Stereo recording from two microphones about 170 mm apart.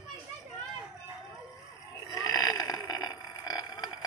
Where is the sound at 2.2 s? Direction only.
25° left (ahead or behind).